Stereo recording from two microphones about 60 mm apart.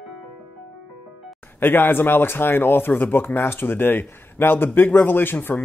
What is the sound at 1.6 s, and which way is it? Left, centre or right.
Speech, left.